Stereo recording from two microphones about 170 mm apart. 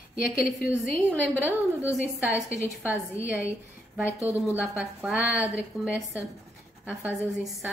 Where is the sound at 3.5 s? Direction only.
10° right (ahead or behind).